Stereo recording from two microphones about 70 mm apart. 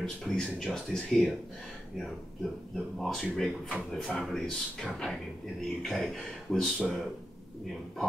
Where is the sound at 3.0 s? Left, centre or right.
Centre.